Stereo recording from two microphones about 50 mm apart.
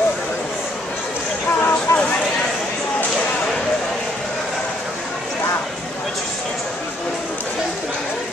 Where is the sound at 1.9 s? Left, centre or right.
Left.